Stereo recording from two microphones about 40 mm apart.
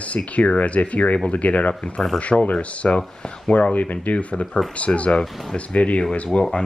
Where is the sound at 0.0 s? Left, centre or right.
Left.